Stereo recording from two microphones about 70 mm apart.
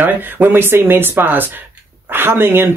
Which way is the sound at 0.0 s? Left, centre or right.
Right.